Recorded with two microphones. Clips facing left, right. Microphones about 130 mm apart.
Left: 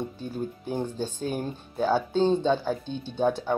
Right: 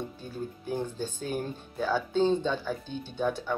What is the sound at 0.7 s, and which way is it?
Speech, 20° left (ahead or behind).